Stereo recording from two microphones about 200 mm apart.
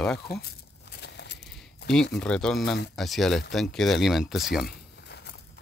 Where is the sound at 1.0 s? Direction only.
60° left (ahead or behind).